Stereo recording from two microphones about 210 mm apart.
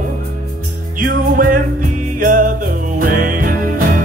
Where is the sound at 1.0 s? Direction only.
40° right (ahead or behind).